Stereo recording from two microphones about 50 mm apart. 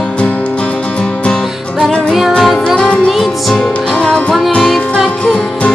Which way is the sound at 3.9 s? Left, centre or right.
Centre.